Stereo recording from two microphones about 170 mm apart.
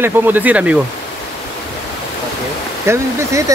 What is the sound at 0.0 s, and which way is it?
Speech, 10° right (ahead or behind).